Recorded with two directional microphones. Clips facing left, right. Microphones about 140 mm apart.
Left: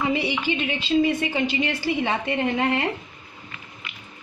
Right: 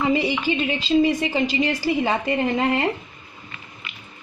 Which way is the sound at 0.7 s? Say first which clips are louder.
Right 2 dB; 35° right (ahead or behind).